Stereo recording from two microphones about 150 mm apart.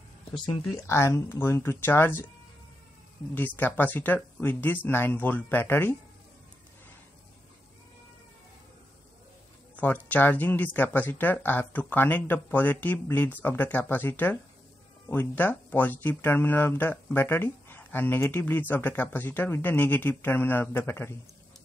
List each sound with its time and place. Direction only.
0.3 s speech: 30° left (ahead or behind)
0.8 s speech: 20° left (ahead or behind)
3.3 s speech: 10° left (ahead or behind)
9.8 s speech: 10° left (ahead or behind)